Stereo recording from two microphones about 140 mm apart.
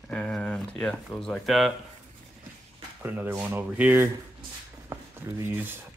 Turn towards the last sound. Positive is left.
turn(degrees=-15)  # may be behind; listen again after turning